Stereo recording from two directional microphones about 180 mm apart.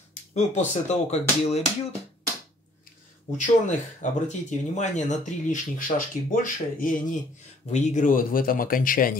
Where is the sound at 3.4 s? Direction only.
45° left (ahead or behind).